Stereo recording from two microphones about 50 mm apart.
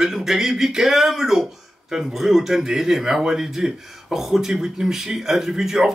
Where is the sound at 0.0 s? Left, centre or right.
Centre.